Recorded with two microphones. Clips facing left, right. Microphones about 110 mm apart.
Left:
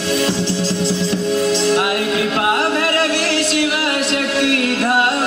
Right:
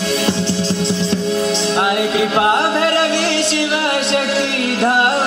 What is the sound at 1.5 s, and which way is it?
Music, 25° right (ahead or behind).